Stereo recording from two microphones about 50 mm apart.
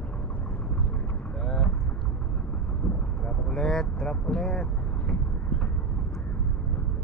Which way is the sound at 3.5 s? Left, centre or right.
Centre.